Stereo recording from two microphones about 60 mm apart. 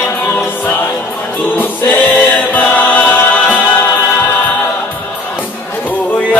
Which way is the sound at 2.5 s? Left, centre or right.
Left.